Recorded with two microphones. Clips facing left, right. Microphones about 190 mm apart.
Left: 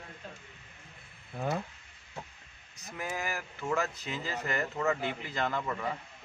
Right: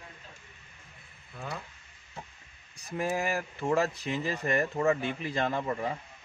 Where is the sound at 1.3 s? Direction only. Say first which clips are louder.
Left 6 dB; 45° left (ahead or behind).